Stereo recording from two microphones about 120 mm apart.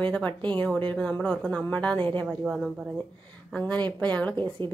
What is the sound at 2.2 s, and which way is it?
Speech, centre (ahead or behind).